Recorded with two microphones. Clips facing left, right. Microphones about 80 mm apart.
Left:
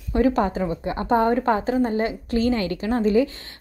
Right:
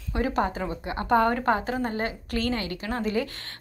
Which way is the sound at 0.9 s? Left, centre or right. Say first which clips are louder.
Left 1 dB; left.